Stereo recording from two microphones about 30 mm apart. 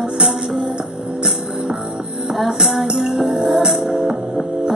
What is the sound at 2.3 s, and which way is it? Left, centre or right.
Music, centre.